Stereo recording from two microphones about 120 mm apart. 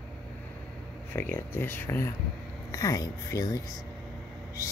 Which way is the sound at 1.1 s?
20° left (ahead or behind).